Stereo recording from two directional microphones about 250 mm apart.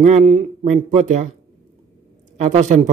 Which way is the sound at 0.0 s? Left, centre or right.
Right.